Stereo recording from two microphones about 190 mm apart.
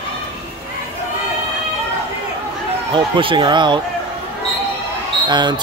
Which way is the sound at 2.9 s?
25° right (ahead or behind).